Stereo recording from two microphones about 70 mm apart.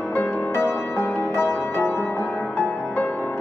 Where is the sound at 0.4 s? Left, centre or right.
Left.